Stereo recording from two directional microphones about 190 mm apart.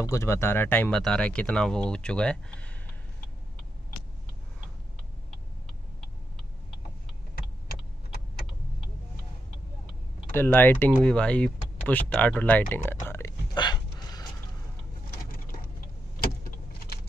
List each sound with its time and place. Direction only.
0.1 s speech: 15° left (ahead or behind)
10.3 s speech: 10° left (ahead or behind)
13.0 s a sound: 15° left (ahead or behind)